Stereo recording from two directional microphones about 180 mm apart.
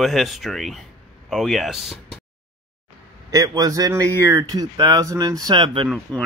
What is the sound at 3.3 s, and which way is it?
A man's voice, 20° right (ahead or behind).